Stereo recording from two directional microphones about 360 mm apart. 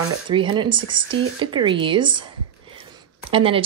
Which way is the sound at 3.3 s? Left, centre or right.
Centre.